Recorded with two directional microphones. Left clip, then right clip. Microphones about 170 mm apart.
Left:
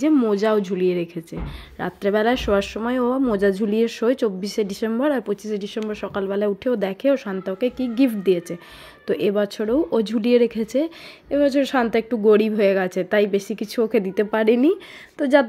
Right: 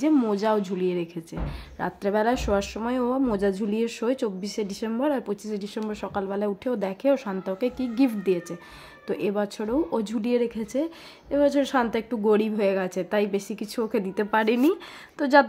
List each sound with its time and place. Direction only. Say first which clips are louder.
0.0 s a woman's voice: left 4 dB; 15° left (ahead or behind)